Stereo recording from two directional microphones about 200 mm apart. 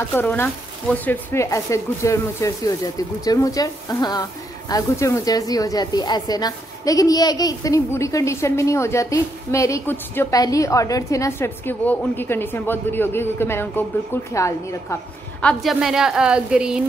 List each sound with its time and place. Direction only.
0.0 s speech: 10° left (ahead or behind)
15.4 s a woman's voice: centre (ahead or behind)